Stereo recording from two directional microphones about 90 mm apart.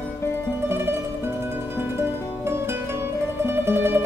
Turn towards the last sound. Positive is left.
turn(degrees=-25)  # may be behind; listen again after turning